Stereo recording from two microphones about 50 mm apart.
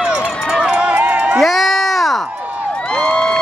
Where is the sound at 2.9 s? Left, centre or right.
Centre.